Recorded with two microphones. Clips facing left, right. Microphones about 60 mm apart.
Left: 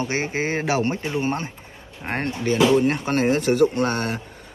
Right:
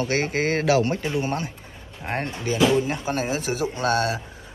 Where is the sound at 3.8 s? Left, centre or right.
Left.